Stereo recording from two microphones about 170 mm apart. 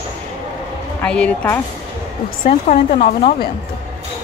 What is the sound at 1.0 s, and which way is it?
Speech, 5° left (ahead or behind).